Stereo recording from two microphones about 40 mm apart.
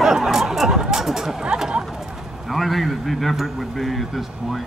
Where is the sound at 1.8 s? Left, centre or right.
Centre.